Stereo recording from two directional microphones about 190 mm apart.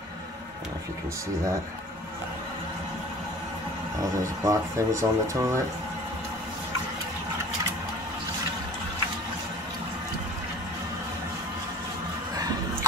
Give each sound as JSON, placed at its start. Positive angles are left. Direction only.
{"t": 4.0, "sound": "speech", "side_deg": -15}